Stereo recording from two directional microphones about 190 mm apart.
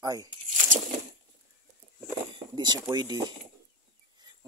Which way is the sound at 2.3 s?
20° right (ahead or behind).